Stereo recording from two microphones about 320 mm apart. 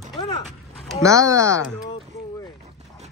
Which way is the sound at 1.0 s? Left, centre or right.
Centre.